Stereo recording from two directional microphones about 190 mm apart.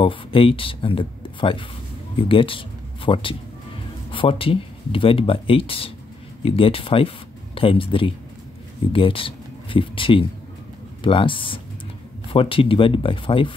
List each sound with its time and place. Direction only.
0.0 s speech: 30° left (ahead or behind)